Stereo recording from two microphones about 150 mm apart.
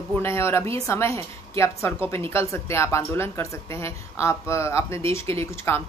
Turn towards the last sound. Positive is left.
turn(degrees=15)  # may be behind; listen again after turning